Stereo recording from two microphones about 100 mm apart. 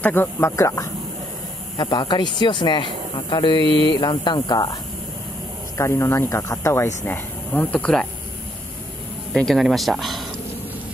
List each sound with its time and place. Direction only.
0.0 s speech: 20° left (ahead or behind)
1.8 s speech: 45° left (ahead or behind)
5.8 s speech: 30° left (ahead or behind); by 8.1 s 10° left (ahead or behind)
9.3 s speech: 5° left (ahead or behind)